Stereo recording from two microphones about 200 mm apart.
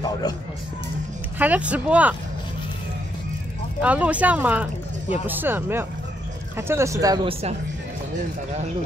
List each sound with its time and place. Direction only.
1.4 s speech: 5° right (ahead or behind)
3.8 s speech: 5° right (ahead or behind); by 7.5 s 25° right (ahead or behind)